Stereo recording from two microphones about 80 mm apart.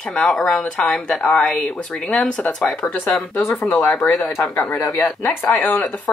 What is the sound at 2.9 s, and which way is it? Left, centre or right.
Speech, left.